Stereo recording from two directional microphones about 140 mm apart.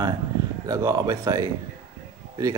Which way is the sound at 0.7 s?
25° right (ahead or behind).